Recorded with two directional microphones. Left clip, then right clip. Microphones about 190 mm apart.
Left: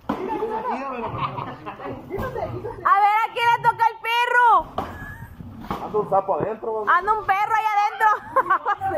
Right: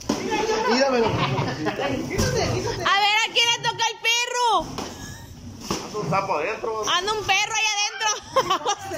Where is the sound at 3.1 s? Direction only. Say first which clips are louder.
Left 1 dB; 10° right (ahead or behind).